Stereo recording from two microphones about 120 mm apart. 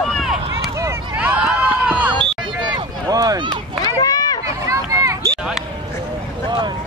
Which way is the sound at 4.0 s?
35° left (ahead or behind).